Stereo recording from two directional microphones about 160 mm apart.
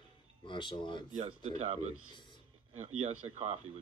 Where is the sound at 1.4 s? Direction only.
45° right (ahead or behind).